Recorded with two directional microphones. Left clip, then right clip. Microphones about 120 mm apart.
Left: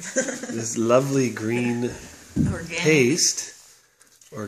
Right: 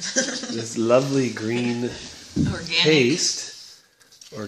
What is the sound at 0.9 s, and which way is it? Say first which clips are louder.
Speech: right 1 dB; 10° left (ahead or behind).